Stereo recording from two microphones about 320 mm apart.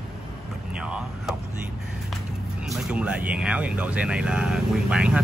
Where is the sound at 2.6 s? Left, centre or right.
Centre.